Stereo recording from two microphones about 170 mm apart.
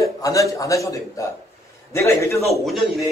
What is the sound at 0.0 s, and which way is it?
A man's voice, 20° left (ahead or behind).